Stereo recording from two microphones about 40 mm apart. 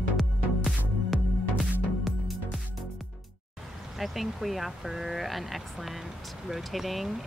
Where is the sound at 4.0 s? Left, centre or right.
Centre.